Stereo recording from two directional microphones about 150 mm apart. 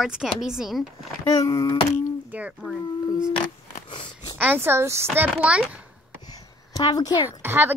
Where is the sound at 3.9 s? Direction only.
30° left (ahead or behind).